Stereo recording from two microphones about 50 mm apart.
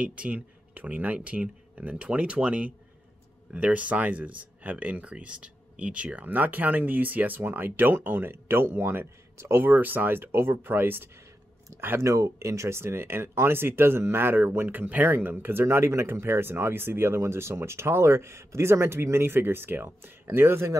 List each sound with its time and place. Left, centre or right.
0.0 s speech: right
9.6 s speech: right
12.0 s speech: right
15.6 s speech: right